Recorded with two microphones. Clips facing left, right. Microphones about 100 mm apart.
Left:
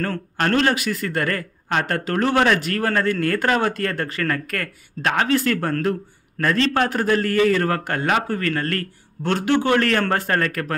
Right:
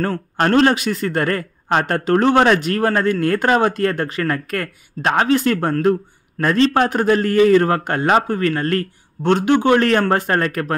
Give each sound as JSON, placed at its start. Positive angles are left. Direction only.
{"t": 0.0, "sound": "a man's voice", "side_deg": -25}